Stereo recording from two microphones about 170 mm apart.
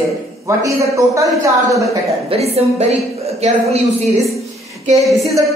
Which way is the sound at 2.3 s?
35° right (ahead or behind).